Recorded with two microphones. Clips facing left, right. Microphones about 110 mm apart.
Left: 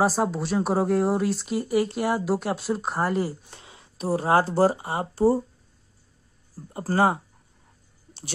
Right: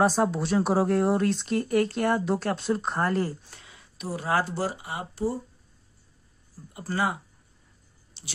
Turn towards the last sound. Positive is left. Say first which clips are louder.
# left 6 dB
turn(degrees=40)  # may be behind; listen again after turning